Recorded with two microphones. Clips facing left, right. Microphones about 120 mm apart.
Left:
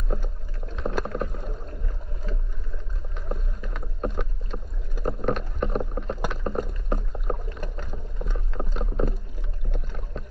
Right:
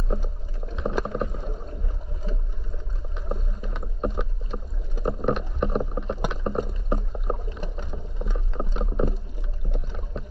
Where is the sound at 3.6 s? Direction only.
20° right (ahead or behind).